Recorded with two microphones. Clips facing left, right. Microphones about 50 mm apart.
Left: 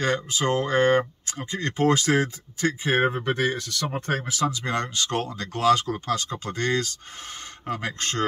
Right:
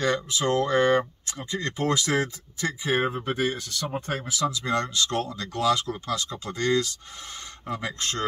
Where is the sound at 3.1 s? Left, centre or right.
Left.